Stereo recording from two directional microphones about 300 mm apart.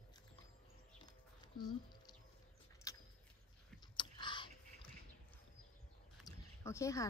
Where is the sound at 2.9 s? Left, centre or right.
Centre.